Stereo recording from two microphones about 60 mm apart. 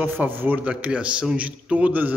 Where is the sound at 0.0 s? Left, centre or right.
Right.